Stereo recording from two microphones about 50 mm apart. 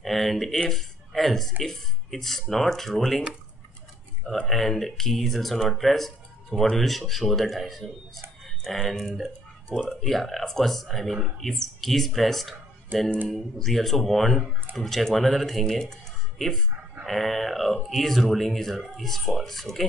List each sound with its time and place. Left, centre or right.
0.0 s speech: centre
4.3 s speech: centre